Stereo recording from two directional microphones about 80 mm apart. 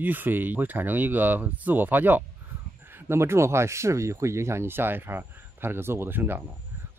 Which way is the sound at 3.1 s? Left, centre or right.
Right.